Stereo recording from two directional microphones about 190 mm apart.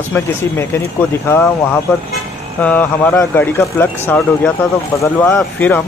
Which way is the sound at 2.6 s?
10° left (ahead or behind).